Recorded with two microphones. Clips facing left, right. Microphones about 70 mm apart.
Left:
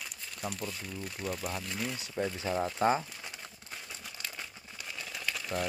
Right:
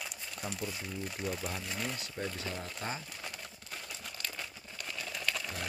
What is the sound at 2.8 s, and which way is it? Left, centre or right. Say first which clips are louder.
Speech: left 12 dB; left.